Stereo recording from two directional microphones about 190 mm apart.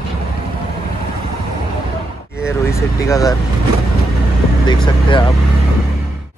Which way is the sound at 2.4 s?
15° left (ahead or behind).